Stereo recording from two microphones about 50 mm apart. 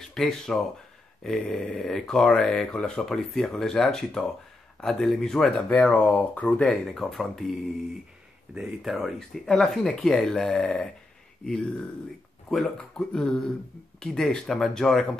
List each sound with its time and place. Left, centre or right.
0.0 s speech: centre
5.7 s speech: left
6.6 s speech: centre
8.5 s speech: centre
8.9 s speech: centre
9.7 s speech: centre
12.4 s speech: centre
12.7 s speech: centre